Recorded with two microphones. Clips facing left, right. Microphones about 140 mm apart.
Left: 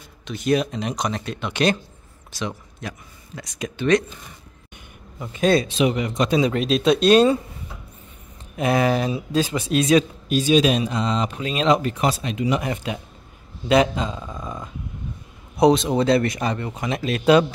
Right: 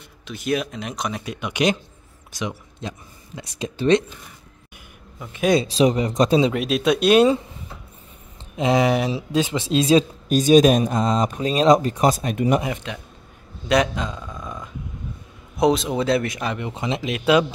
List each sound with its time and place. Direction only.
0.3 s speech: 5° right (ahead or behind); by 4.0 s 30° right (ahead or behind)
5.6 s speech: 35° right (ahead or behind)
6.5 s speech: 5° right (ahead or behind)
8.5 s speech: 20° right (ahead or behind)
10.2 s speech: 45° right (ahead or behind)
13.7 s speech: centre (ahead or behind)
16.7 s speech: 25° right (ahead or behind)